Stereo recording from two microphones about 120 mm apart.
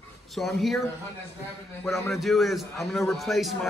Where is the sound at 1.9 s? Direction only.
20° left (ahead or behind).